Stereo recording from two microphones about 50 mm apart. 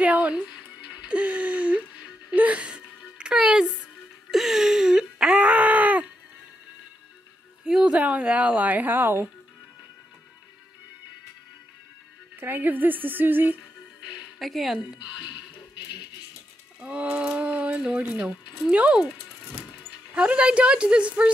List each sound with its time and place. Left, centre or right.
0.0 s speech: right
0.4 s music: centre
1.0 s a sound: right
2.3 s music: right
4.3 s a sound: centre; by 6.0 s right
7.6 s speech: right
12.4 s speech: right
14.4 s speech: centre
16.8 s speech: right
17.3 s a sound: right
17.8 s speech: right
20.2 s speech: right